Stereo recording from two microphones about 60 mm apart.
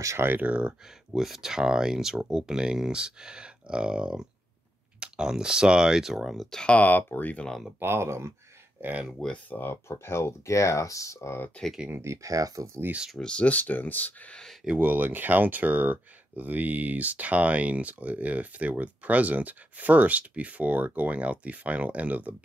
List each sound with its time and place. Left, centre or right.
0.0 s speech: right
0.3 s speech: right
1.1 s speech: centre
6.6 s speech: left
7.8 s speech: right
9.5 s speech: left
9.8 s speech: left
11.9 s speech: right
13.2 s speech: centre
14.8 s speech: right